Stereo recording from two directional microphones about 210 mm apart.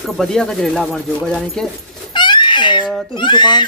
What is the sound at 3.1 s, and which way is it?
Speech, 20° left (ahead or behind).